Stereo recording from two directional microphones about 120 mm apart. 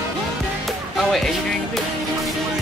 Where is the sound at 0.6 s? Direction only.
Centre (ahead or behind).